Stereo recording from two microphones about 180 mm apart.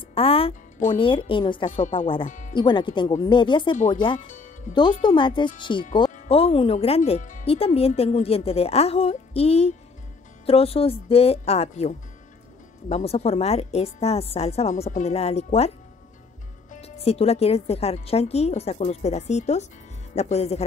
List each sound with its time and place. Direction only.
0.1 s speech: 30° left (ahead or behind)
2.2 s music: 45° left (ahead or behind)
2.5 s speech: 25° left (ahead or behind)
4.3 s music: 45° left (ahead or behind)
4.7 s speech: 25° left (ahead or behind)
16.7 s speech: 35° left (ahead or behind)